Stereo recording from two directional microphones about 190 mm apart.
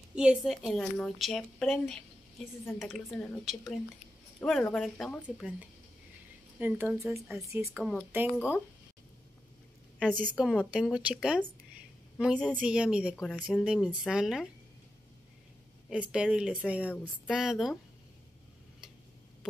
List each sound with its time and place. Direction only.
0.1 s a woman's voice: 5° right (ahead or behind)
4.4 s a woman's voice: 10° left (ahead or behind)
6.6 s a woman's voice: 5° right (ahead or behind)
9.9 s a woman's voice: 5° left (ahead or behind)
15.9 s a woman's voice: 5° right (ahead or behind)